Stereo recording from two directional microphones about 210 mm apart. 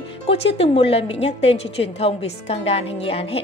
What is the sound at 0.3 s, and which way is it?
Speech, 25° left (ahead or behind).